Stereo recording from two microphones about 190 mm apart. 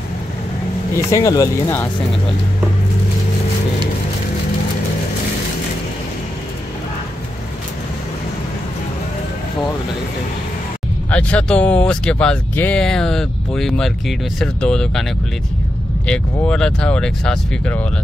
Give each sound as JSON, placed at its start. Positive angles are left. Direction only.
{"t": 1.1, "sound": "speech", "side_deg": 20}
{"t": 11.1, "sound": "speech", "side_deg": 5}
{"t": 16.1, "sound": "speech", "side_deg": 5}